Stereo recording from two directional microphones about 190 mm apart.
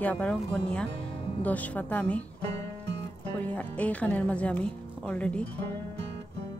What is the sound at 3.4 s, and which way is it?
Speech, 5° left (ahead or behind).